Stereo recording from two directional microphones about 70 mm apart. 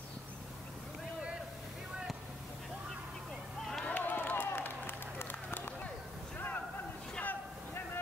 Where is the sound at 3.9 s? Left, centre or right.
Left.